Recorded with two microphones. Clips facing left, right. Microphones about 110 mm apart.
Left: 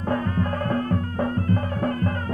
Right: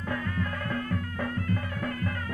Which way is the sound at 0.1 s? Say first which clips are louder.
Left 8 dB; 40° left (ahead or behind).